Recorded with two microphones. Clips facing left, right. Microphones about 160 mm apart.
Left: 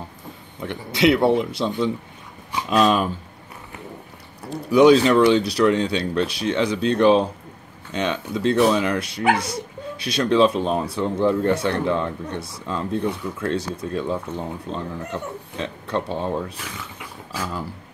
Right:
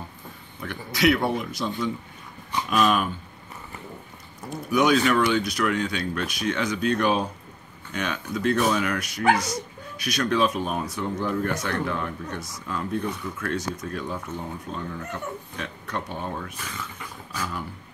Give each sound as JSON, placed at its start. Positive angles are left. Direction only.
{"t": 0.6, "sound": "speech", "side_deg": 25}
{"t": 4.5, "sound": "speech", "side_deg": 30}